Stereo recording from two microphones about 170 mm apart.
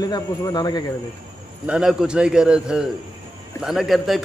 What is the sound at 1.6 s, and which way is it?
A man's voice, 5° right (ahead or behind).